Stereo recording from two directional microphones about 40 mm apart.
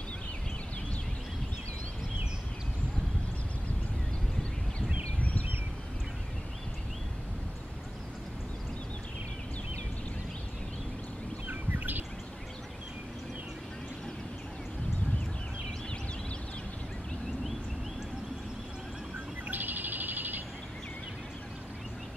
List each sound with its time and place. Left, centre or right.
11.4 s bird: right
19.5 s bird: right